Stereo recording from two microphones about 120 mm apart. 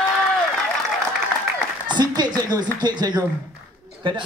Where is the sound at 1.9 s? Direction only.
35° right (ahead or behind).